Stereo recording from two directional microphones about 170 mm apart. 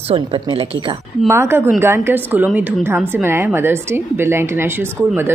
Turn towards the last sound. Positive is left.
turn(degrees=-15)  # may be behind; listen again after turning